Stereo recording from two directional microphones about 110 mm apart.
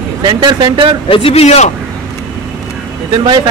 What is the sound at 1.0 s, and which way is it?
Speech, 60° left (ahead or behind).